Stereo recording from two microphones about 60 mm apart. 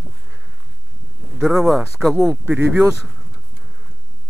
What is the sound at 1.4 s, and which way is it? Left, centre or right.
Speech, centre.